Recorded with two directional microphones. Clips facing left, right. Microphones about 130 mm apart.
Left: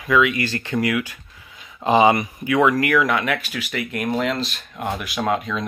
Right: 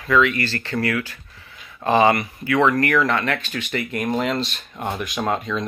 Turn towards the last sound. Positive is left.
turn(degrees=5)  # may be behind; listen again after turning